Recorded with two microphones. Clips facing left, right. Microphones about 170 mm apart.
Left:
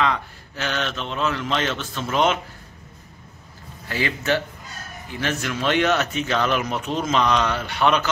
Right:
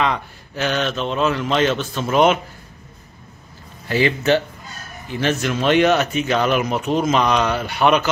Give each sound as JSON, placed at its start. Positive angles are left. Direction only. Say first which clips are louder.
{"t": 0.0, "sound": "speech", "louder": "right 2 dB", "side_deg": -15}
{"t": 3.9, "sound": "a man's voice", "louder": "right 6 dB", "side_deg": -25}